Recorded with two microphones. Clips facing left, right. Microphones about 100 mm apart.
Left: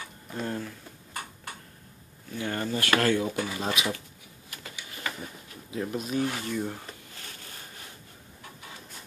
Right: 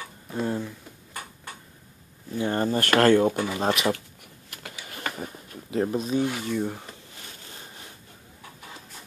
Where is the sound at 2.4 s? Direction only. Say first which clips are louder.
Right 6 dB; 35° right (ahead or behind); by 4.0 s 50° right (ahead or behind).